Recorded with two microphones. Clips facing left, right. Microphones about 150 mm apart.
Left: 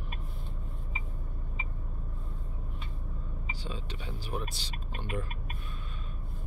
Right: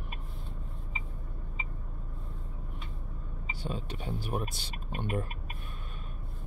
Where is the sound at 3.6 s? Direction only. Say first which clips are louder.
Right 6 dB; 50° right (ahead or behind).